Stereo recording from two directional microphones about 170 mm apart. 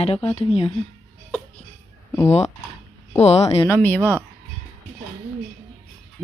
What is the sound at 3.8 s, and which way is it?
Speech, 10° left (ahead or behind).